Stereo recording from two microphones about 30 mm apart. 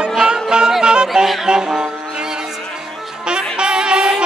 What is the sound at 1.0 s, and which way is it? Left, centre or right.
Music, centre.